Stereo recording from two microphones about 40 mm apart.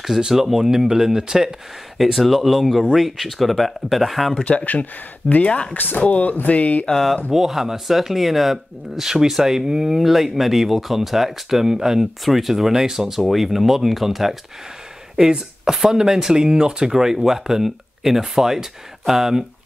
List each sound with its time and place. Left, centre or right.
0.3 s speech: centre
2.1 s speech: centre
5.4 s speech: left
6.9 s speech: centre
7.2 s speech: centre
15.1 s speech: centre